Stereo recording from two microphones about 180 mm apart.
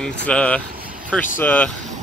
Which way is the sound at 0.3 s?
5° left (ahead or behind).